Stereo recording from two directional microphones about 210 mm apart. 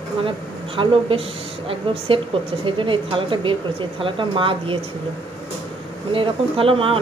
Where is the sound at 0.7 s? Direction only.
25° right (ahead or behind).